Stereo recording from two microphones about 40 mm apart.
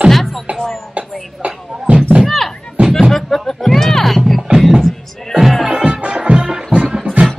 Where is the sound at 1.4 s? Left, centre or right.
Right.